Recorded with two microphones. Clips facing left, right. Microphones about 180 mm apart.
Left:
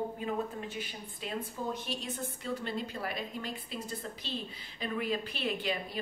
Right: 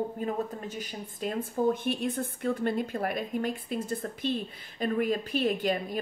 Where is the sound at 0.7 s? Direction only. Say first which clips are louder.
Right 4 dB; 45° right (ahead or behind).